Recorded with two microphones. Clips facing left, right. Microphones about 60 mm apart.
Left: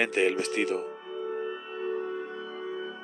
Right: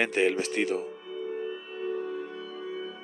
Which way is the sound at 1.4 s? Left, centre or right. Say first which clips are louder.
Left 1 dB; left.